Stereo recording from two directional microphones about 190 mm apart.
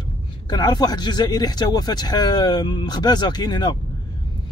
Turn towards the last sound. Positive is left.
turn(degrees=20)  # may be behind; listen again after turning